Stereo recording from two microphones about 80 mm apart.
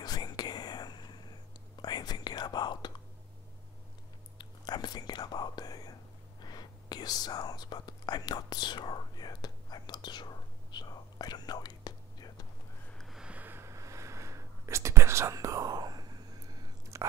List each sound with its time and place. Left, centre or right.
0.0 s whispering: left
4.4 s whispering: left
12.9 s sniff: centre
13.2 s a sound: centre; by 16.6 s right
16.9 s biting: right